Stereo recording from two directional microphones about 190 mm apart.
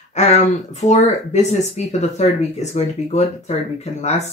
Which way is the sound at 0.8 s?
40° left (ahead or behind).